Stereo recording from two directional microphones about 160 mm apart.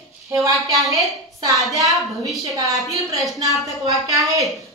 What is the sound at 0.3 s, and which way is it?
A woman's voice, 20° right (ahead or behind).